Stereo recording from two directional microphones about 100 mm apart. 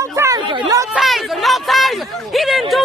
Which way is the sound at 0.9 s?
Centre (ahead or behind).